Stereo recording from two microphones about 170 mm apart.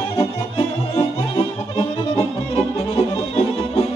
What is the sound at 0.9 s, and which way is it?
Music, 35° left (ahead or behind).